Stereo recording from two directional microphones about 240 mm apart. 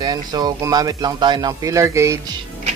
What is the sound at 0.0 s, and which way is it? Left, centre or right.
Speech, centre.